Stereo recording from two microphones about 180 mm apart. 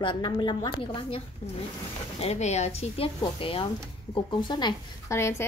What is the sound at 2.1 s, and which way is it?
A woman's voice, 35° left (ahead or behind).